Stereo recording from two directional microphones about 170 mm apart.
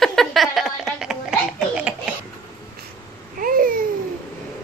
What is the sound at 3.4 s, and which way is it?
Babbling, 55° right (ahead or behind).